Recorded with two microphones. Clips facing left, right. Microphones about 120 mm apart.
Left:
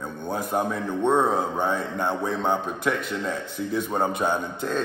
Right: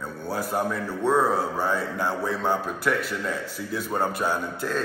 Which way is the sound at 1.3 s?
5° right (ahead or behind).